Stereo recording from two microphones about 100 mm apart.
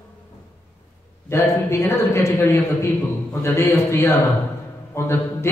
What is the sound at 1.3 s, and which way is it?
A man's voice, 25° left (ahead or behind).